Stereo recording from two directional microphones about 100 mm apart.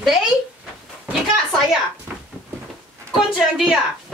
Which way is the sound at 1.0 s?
5° right (ahead or behind).